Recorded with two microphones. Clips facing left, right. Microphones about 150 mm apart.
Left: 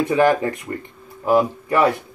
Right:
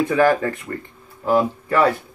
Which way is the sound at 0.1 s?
20° left (ahead or behind).